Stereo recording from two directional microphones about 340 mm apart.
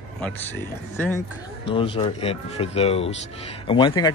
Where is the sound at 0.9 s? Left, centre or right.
Centre.